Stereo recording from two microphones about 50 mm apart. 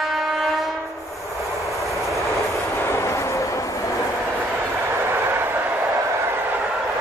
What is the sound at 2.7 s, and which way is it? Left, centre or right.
Vehicle, left.